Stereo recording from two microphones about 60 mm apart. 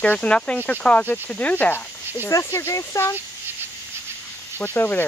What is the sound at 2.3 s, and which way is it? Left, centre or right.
Speech, left.